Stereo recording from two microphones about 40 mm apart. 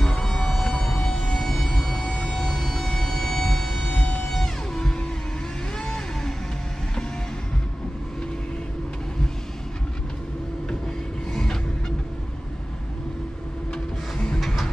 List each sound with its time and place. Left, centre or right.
0.2 s a sound: centre
3.9 s music: left
4.3 s music: centre
14.1 s music: left
14.4 s music: centre